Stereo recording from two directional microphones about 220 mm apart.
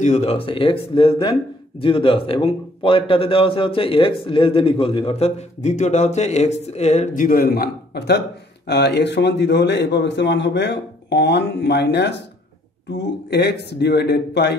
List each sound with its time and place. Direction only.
0.0 s a man's voice: 30° left (ahead or behind); by 14.5 s 50° left (ahead or behind)